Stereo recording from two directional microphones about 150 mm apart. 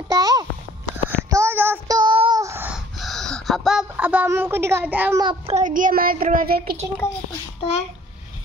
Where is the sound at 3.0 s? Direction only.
Centre (ahead or behind).